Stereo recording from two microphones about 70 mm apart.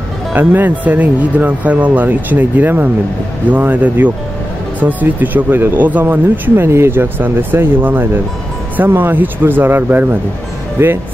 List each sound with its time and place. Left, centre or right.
0.3 s speech: right